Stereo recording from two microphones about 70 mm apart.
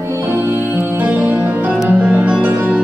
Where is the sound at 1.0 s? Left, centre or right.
Right.